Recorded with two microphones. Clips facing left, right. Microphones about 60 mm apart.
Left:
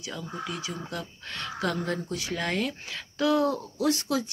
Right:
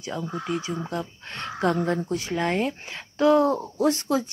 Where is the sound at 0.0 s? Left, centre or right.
Right.